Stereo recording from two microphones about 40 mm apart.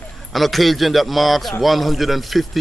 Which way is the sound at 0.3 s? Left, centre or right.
Centre.